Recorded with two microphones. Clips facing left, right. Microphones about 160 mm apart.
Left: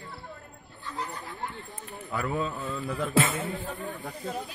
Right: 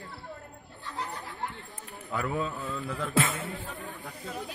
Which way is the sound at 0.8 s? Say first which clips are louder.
Left 1 dB; 70° right (ahead or behind).